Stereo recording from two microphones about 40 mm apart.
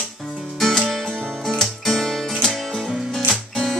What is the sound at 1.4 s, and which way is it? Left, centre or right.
Music, centre.